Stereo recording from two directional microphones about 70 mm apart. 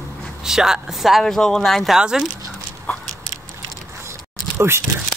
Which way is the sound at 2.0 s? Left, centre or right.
Centre.